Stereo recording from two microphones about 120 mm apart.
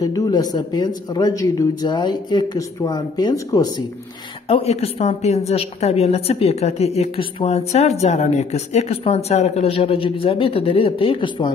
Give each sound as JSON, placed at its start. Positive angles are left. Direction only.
{"t": 0.0, "sound": "speech", "side_deg": 30}
{"t": 4.5, "sound": "speech", "side_deg": 55}